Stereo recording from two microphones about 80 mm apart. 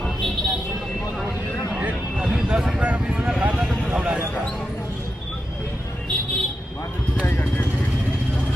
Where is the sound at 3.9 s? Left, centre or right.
Centre.